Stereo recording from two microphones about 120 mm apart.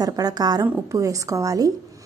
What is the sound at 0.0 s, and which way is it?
A woman's voice, 30° right (ahead or behind).